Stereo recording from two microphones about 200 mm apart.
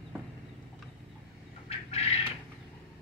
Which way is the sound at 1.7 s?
30° left (ahead or behind).